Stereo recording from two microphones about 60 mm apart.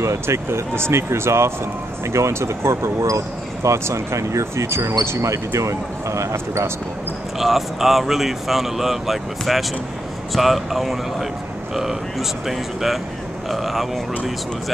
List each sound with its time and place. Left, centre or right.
0.0 s speech: right
3.0 s speech: right
7.3 s speech: centre